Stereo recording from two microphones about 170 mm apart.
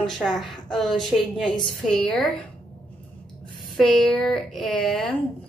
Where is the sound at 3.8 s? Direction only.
Centre (ahead or behind).